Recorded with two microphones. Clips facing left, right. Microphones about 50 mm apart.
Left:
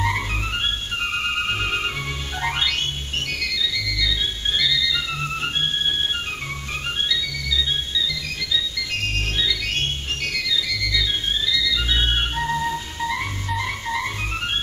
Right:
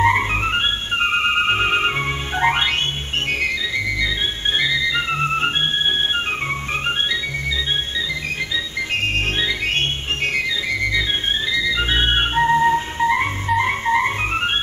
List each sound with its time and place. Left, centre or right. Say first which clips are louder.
0.0 s music: right 7 dB; right
10.2 s organ: right 4 dB; right
11.5 s music: right 5 dB; right